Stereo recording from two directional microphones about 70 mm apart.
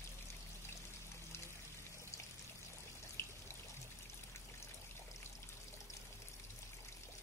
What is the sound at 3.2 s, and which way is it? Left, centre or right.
Water, left.